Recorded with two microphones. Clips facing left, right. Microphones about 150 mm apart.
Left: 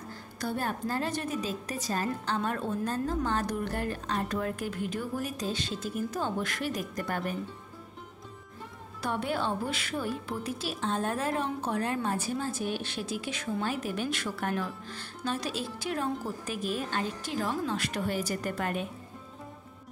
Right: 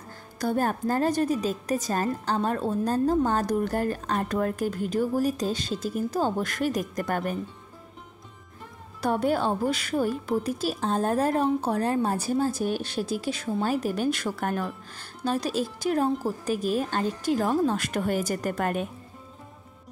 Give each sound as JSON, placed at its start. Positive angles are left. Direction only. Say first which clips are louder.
{"t": 0.4, "sound": "a woman's voice", "louder": "right 7 dB", "side_deg": -45}
{"t": 9.0, "sound": "a woman's voice", "louder": "right 7 dB", "side_deg": -40}